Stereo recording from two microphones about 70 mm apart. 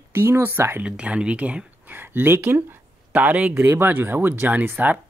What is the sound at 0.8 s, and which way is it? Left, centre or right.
Speech, centre.